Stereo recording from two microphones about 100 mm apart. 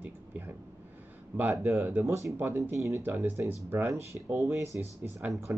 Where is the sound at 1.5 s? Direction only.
25° right (ahead or behind).